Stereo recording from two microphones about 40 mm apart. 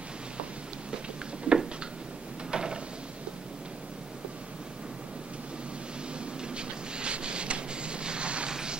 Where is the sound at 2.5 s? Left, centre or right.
Right.